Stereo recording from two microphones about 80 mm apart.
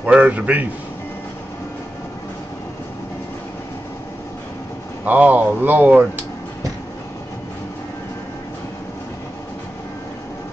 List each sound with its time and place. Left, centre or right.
0.0 s speech: centre
5.0 s speech: right